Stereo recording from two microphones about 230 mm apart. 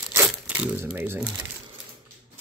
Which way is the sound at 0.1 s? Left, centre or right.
Centre.